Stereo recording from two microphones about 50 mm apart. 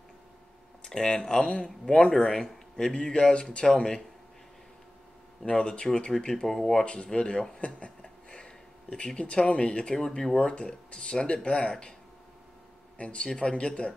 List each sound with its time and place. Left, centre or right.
0.8 s speech: centre
2.1 s speech: centre
2.4 s speech: centre
5.4 s speech: centre
8.0 s a sound: centre
8.9 s speech: left
12.9 s speech: left